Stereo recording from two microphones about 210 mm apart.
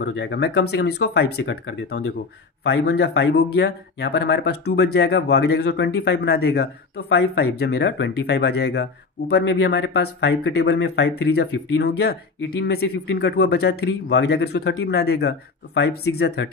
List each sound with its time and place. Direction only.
0.0 s speech: 55° left (ahead or behind)